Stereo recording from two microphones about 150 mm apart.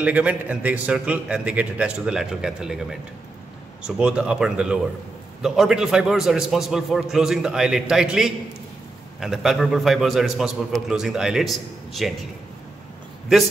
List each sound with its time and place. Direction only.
0.0 s a man's voice: 10° right (ahead or behind)